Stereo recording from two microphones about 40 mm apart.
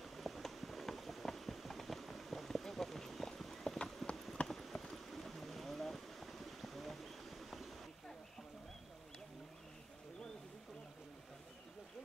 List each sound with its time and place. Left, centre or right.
0.0 s clip-clop: centre
3.7 s clip-clop: left
4.5 s clip-clop: centre
4.9 s boat: centre